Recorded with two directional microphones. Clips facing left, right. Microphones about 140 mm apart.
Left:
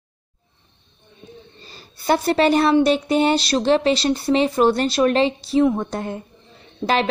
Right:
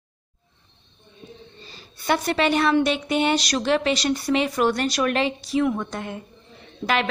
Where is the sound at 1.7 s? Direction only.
35° left (ahead or behind).